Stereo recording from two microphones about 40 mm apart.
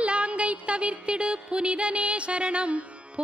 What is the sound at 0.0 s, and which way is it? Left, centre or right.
Music, right.